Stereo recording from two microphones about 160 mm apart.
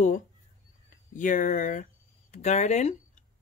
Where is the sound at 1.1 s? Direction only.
55° left (ahead or behind).